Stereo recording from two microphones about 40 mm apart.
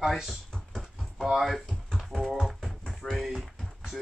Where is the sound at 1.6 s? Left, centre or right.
Centre.